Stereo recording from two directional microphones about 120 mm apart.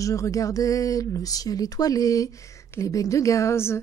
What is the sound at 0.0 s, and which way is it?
Speech, 25° left (ahead or behind).